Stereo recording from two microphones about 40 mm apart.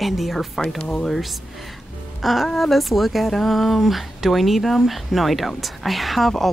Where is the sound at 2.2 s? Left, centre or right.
Centre.